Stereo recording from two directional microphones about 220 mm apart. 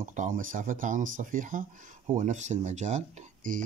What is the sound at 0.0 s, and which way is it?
Speech, 35° right (ahead or behind).